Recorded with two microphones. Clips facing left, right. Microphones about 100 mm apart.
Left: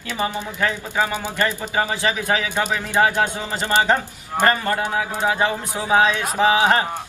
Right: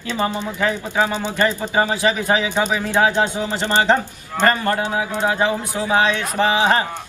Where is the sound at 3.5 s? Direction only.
15° left (ahead or behind).